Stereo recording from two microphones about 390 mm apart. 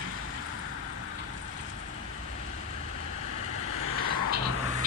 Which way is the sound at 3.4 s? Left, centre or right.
Left.